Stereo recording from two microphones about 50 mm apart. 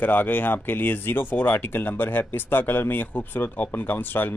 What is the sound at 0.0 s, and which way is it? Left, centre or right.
Speech, left.